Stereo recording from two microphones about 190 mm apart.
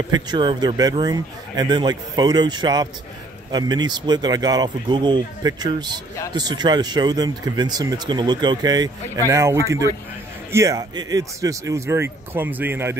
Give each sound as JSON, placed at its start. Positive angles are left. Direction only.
{"t": 0.1, "sound": "speech", "side_deg": -25}